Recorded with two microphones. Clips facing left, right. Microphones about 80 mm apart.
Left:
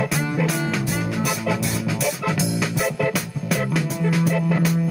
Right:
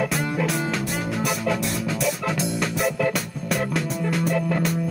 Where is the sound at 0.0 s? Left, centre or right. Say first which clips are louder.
Left 1 dB; centre.